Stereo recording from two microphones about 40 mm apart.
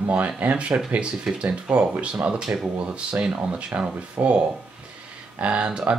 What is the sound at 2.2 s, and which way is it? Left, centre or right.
Speech, right.